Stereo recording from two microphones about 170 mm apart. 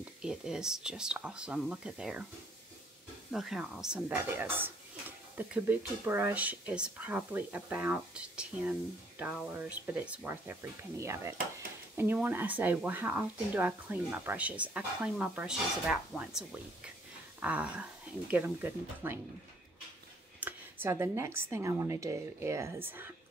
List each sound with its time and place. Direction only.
0.2 s speech: 5° right (ahead or behind)
3.3 s speech: centre (ahead or behind)
20.3 s a sound: 10° right (ahead or behind)
21.5 s speech: 15° right (ahead or behind)